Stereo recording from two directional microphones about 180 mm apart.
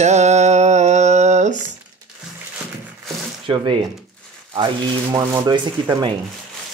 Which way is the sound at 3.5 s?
25° right (ahead or behind).